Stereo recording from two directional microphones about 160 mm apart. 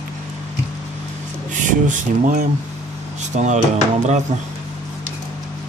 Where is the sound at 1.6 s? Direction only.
55° right (ahead or behind).